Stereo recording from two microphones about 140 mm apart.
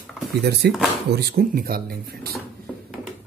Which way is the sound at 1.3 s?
90° right.